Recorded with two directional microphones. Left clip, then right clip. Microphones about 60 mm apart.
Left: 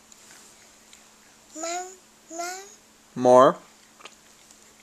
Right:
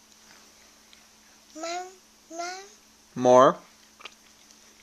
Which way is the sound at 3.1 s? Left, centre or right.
Left.